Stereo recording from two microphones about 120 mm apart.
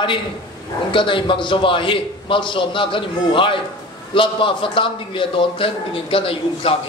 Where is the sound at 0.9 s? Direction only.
45° left (ahead or behind).